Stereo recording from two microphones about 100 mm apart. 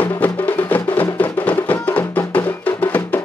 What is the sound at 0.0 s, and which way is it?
Music, 15° left (ahead or behind).